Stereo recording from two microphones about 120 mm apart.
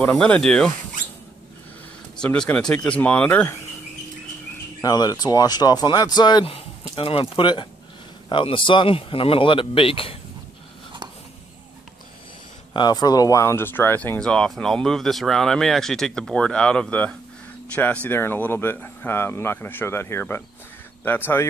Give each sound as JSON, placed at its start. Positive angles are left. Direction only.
{"t": 0.0, "sound": "speech", "side_deg": 10}
{"t": 2.1, "sound": "speech", "side_deg": 5}
{"t": 4.8, "sound": "speech", "side_deg": 35}
{"t": 6.4, "sound": "speech", "side_deg": 50}
{"t": 12.7, "sound": "speech", "side_deg": 35}
{"t": 14.2, "sound": "speech", "side_deg": 5}